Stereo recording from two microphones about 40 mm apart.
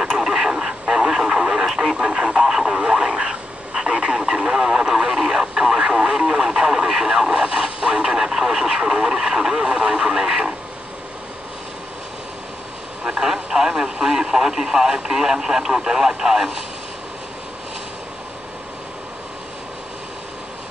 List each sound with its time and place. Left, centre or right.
0.2 s radio: centre
13.2 s speech: centre